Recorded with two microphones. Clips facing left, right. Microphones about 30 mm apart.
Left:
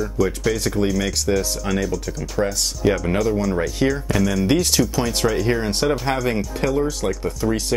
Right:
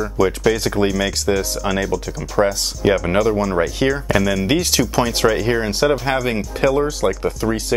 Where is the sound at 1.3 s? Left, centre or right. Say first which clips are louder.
Right 2 dB; centre.